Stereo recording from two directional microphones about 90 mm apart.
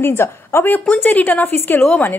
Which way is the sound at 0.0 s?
25° left (ahead or behind).